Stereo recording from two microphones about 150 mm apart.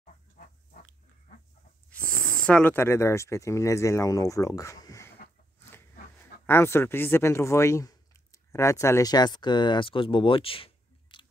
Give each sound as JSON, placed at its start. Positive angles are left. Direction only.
{"t": 0.0, "sound": "pig", "side_deg": 65}
{"t": 2.4, "sound": "speech", "side_deg": 10}
{"t": 6.4, "sound": "speech", "side_deg": 15}